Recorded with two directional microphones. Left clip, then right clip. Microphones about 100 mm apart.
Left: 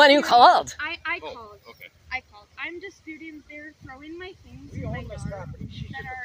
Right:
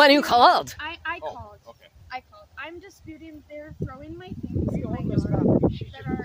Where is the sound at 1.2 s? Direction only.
35° right (ahead or behind).